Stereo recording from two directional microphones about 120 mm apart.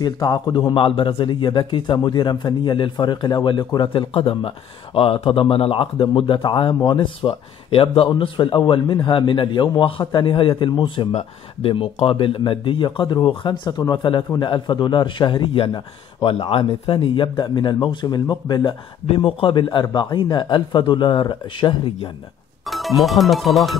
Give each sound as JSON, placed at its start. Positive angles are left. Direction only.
{"t": 0.0, "sound": "a man's voice", "side_deg": 35}
{"t": 22.7, "sound": "speech", "side_deg": 0}